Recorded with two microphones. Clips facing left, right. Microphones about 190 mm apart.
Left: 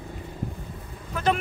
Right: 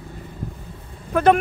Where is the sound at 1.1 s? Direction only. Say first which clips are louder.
Right 9 dB; 55° right (ahead or behind).